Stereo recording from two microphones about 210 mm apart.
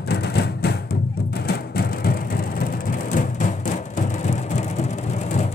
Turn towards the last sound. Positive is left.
turn(degrees=40)  # may be behind; listen again after turning